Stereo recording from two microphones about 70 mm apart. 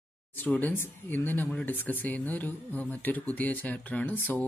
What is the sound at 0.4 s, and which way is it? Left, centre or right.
Speech, left.